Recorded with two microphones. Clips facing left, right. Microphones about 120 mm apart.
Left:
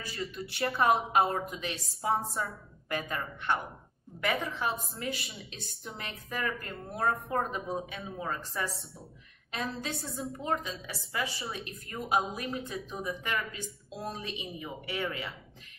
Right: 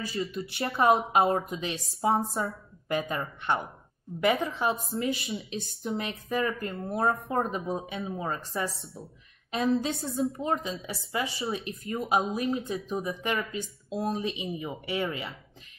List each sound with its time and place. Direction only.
0.0 s a woman's voice: 25° right (ahead or behind)